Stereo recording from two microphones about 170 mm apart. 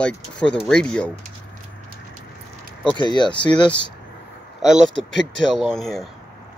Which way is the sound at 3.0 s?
25° left (ahead or behind).